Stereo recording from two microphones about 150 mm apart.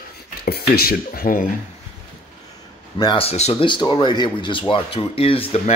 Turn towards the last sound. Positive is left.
turn(degrees=40)  # may be behind; listen again after turning